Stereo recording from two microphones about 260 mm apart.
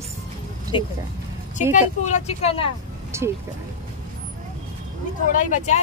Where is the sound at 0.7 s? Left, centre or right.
Centre.